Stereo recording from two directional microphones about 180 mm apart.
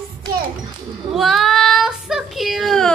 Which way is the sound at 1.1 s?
Centre (ahead or behind).